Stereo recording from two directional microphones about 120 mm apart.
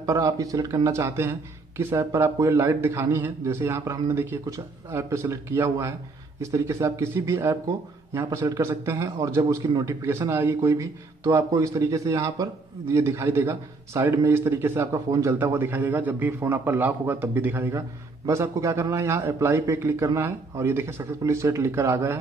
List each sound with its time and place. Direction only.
0.0 s a man's voice: 30° right (ahead or behind)